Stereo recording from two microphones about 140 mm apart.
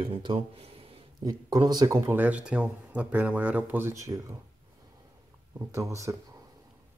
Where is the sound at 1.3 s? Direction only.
30° right (ahead or behind).